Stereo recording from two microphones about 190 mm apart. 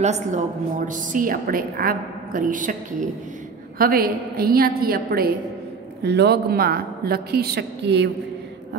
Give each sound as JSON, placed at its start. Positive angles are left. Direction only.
{"t": 0.0, "sound": "a woman's voice", "side_deg": -40}